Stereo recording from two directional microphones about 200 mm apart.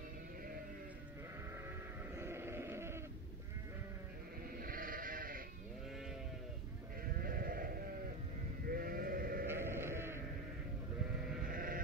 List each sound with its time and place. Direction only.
2.1 s sheep: 10° right (ahead or behind)
4.6 s sheep: 45° right (ahead or behind)
7.2 s sheep: 45° right (ahead or behind)
9.5 s sheep: 10° right (ahead or behind)
11.5 s sheep: 45° right (ahead or behind)